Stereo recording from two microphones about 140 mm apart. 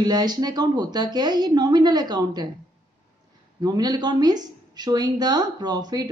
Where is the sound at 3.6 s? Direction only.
30° right (ahead or behind).